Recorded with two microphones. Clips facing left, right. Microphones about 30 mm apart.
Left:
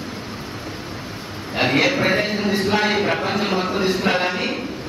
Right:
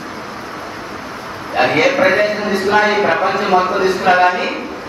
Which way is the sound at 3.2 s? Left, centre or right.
Centre.